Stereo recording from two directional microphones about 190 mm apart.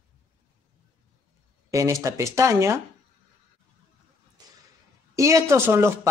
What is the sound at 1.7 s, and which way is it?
Speech, 15° right (ahead or behind).